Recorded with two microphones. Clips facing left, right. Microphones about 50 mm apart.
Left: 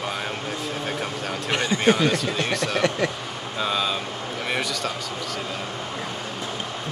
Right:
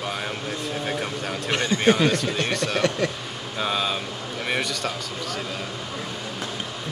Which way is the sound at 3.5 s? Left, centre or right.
Centre.